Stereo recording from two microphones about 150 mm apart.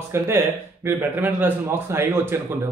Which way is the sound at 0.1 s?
20° right (ahead or behind).